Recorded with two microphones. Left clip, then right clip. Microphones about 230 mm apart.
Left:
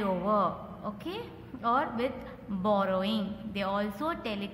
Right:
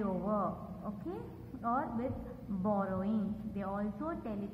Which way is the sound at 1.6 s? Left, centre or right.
Left.